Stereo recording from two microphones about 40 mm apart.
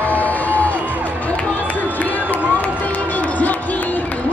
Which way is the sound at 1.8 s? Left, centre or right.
Left.